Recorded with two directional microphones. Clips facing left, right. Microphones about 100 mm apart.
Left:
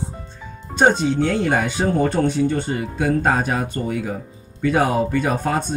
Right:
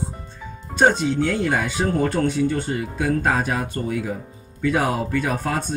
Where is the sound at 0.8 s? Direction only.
25° left (ahead or behind).